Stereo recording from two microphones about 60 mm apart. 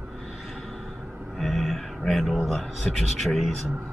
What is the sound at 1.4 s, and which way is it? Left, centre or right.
Speech, centre.